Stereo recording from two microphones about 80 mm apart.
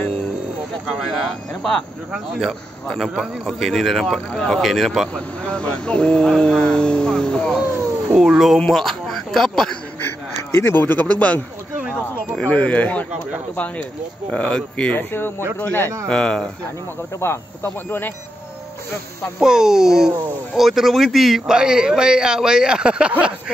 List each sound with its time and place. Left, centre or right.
0.9 s speech: centre
5.5 s speech: centre
8.1 s speech: centre
10.0 s a sound: left
11.1 s speech: centre
11.8 s a sound: centre
12.4 s speech: centre
14.3 s speech: centre
15.0 s speech: left
16.1 s speech: centre
17.2 s speech: left
19.4 s a man's voice: centre